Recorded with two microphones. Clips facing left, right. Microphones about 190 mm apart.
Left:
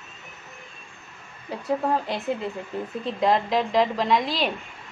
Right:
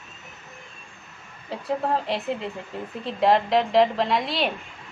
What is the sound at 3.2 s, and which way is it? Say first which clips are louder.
A woman's voice: right 3 dB; centre (ahead or behind).